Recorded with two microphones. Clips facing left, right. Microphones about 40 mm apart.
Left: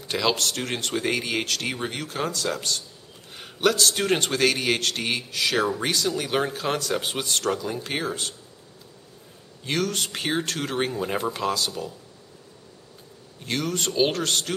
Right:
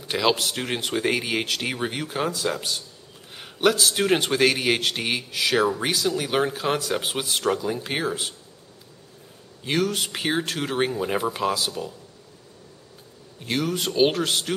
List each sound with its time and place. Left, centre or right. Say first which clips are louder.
0.1 s a man's voice: right 2 dB; centre
9.7 s a man's voice: right 2 dB; centre
13.4 s a man's voice: right 2 dB; centre